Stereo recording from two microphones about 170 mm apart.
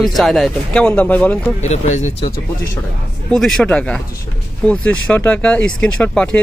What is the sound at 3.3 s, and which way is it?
Speech, 5° left (ahead or behind).